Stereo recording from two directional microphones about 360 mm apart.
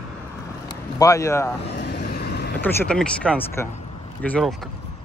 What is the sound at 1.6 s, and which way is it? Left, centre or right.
Vehicle, left.